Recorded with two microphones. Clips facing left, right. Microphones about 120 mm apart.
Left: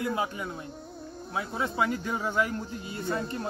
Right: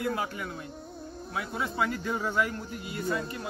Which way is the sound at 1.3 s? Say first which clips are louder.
Left 2 dB; 20° left (ahead or behind).